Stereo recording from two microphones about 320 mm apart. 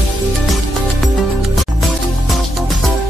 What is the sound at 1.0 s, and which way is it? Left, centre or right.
Music, centre.